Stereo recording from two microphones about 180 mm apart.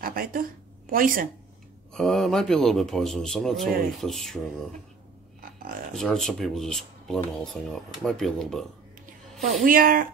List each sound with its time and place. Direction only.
0.0 s a woman's voice: 55° right (ahead or behind)
2.0 s speech: centre (ahead or behind)
5.4 s a sound: 50° right (ahead or behind)
5.9 s speech: centre (ahead or behind)
9.7 s speech: 50° right (ahead or behind)